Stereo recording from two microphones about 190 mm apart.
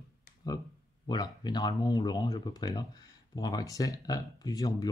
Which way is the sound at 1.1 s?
20° left (ahead or behind).